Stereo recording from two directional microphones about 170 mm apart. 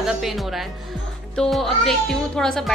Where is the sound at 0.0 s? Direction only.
Centre (ahead or behind).